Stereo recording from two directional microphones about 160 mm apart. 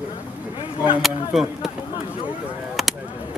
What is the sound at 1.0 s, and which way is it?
Speech, centre (ahead or behind).